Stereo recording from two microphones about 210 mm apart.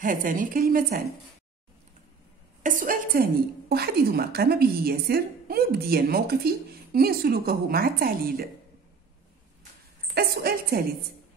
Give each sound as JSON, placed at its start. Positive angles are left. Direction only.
{"t": 0.0, "sound": "a woman's voice", "side_deg": -40}
{"t": 2.6, "sound": "a woman's voice", "side_deg": -40}
{"t": 10.1, "sound": "a woman's voice", "side_deg": -45}